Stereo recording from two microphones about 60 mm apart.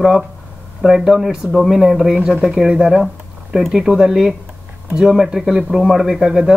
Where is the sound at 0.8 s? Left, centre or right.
Centre.